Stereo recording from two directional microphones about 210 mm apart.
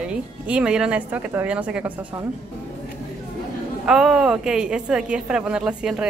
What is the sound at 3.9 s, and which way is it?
Speech, centre (ahead or behind).